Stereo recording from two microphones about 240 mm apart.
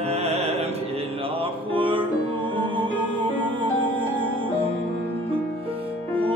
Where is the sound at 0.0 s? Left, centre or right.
Right.